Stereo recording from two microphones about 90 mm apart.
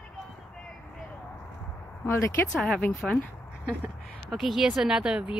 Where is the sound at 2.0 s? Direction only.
25° left (ahead or behind).